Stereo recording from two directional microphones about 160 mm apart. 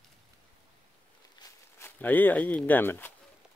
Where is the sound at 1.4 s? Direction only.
15° left (ahead or behind).